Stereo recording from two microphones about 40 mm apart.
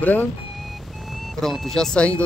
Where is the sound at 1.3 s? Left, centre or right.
Centre.